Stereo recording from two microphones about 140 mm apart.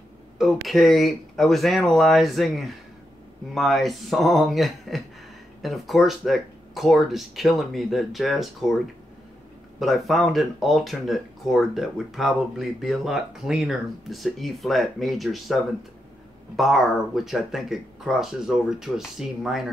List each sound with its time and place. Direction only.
0.4 s speech: centre (ahead or behind)
9.8 s speech: centre (ahead or behind)